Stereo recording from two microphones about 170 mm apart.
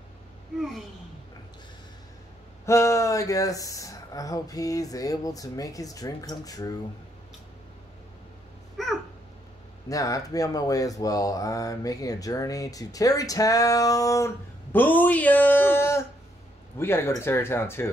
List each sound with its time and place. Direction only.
0.6 s a child's voice: centre (ahead or behind)
2.6 s speech: 15° left (ahead or behind)
8.8 s a sound: centre (ahead or behind)
9.8 s speech: 20° left (ahead or behind)